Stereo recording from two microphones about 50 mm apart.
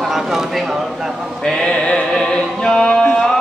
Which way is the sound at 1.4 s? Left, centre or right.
Centre.